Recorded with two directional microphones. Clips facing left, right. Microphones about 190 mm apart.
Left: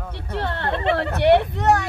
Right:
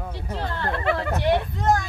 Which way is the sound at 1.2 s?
70° left (ahead or behind).